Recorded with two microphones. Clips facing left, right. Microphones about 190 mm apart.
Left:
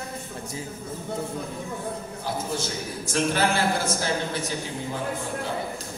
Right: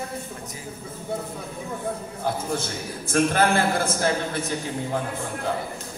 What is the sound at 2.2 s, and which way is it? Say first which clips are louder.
A man's voice: right 3 dB; 50° right (ahead or behind).